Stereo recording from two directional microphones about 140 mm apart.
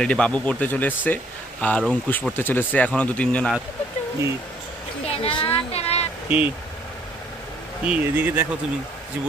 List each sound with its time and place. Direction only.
0.0 s speech: 5° left (ahead or behind)
5.0 s a woman's voice: 45° left (ahead or behind)
6.2 s speech: 10° right (ahead or behind)
7.8 s speech: 10° right (ahead or behind)